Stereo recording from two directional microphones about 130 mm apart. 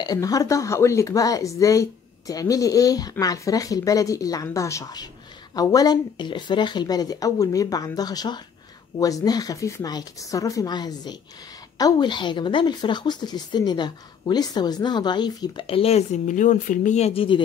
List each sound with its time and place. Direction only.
0.0 s speech: 30° left (ahead or behind)
15.6 s speech: 50° left (ahead or behind)